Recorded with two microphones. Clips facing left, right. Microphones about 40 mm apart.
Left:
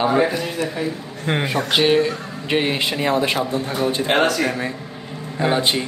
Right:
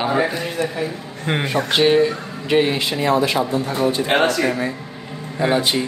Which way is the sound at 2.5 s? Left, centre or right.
Centre.